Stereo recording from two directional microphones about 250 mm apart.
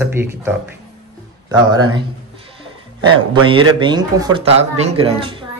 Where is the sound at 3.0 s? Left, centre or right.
Centre.